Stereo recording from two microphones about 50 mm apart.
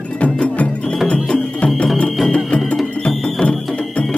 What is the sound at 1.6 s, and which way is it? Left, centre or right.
Music, centre.